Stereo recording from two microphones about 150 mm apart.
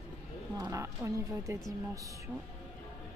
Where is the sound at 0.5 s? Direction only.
20° right (ahead or behind).